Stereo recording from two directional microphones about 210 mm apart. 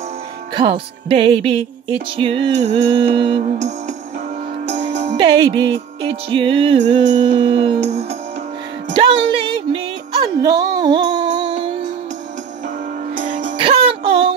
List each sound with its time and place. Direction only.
0.6 s music: 25° right (ahead or behind)
8.9 s speech: 25° right (ahead or behind)
10.2 s music: 20° right (ahead or behind)
13.1 s music: 40° right (ahead or behind)
13.6 s music: 25° right (ahead or behind)